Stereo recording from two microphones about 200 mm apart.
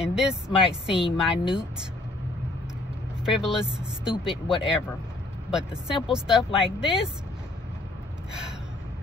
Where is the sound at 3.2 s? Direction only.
5° right (ahead or behind).